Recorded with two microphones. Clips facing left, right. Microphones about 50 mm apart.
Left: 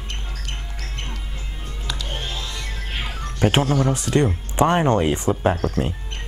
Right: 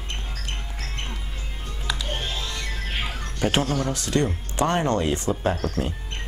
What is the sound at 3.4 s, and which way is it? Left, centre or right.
Speech, centre.